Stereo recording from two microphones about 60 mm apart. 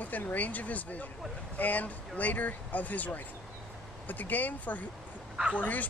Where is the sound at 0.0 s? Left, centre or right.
Left.